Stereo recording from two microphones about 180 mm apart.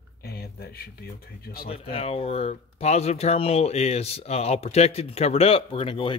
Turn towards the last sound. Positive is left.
turn(degrees=30)  # may be behind; listen again after turning